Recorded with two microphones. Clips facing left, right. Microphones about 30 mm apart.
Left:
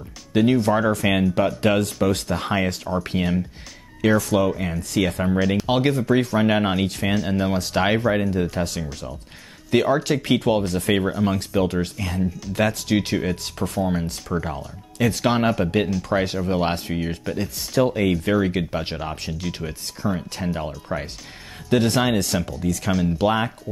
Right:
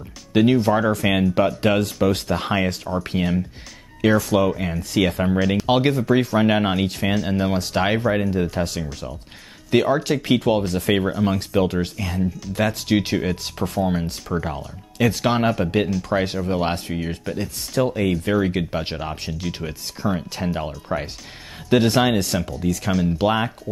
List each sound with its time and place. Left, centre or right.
0.3 s speech: right
0.7 s speech: centre
5.4 s speech: centre
5.7 s speech: centre
22.0 s speech: centre